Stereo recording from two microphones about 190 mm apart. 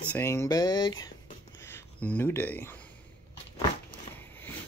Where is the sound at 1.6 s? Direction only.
15° left (ahead or behind).